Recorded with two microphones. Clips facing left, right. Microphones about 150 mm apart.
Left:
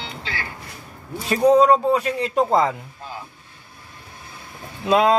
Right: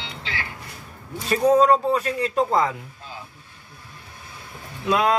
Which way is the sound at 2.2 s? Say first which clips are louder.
Left 2 dB; 25° left (ahead or behind).